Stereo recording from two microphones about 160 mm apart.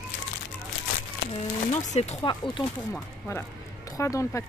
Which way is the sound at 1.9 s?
45° left (ahead or behind).